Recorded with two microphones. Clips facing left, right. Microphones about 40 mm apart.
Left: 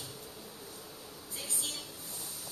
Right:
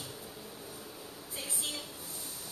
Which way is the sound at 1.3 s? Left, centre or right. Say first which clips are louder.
Right 2 dB; centre.